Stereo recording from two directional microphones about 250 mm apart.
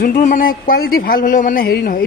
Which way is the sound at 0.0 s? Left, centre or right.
Left.